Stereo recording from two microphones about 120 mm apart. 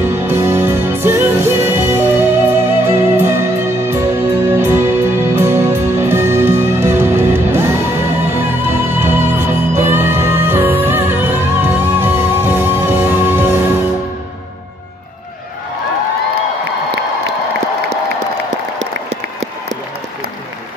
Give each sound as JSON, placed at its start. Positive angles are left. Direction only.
{"t": 0.2, "sound": "music", "side_deg": -20}